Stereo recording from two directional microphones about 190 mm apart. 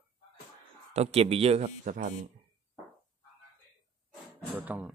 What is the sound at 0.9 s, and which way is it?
A man's voice, 35° right (ahead or behind).